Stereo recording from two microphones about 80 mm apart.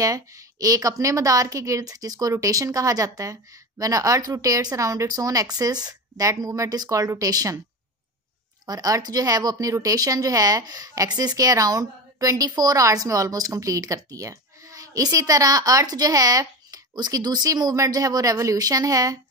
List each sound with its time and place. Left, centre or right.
0.0 s speech: right
8.6 s speech: right